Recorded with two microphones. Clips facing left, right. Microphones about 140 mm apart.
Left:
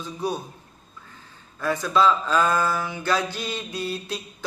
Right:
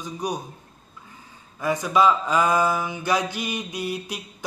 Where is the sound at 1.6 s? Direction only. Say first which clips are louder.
Right 1 dB; 15° right (ahead or behind).